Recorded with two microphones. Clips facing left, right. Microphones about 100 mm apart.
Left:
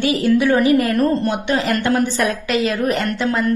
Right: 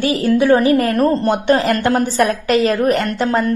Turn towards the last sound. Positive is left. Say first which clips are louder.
# right 3 dB
turn(degrees=-40)  # may be behind; listen again after turning